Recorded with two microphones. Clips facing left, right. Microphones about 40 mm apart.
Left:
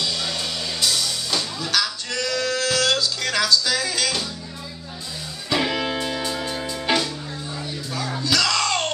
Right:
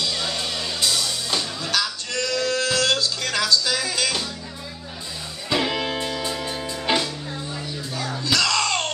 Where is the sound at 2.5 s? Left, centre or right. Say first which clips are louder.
Even; centre.